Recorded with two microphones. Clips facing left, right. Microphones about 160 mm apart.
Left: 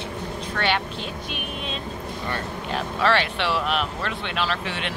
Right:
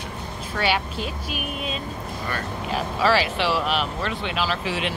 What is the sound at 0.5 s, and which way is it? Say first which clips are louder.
Speech: right 1 dB; 5° right (ahead or behind).